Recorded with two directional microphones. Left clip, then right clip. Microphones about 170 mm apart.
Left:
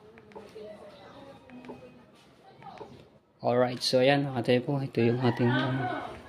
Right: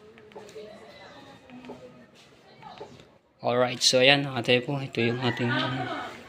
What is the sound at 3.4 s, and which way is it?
A man's voice, 25° left (ahead or behind).